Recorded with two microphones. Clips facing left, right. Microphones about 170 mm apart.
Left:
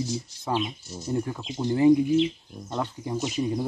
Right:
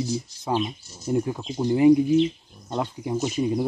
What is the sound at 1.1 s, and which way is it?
Speech, 15° right (ahead or behind).